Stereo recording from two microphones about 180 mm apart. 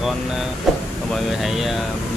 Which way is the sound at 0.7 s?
Centre (ahead or behind).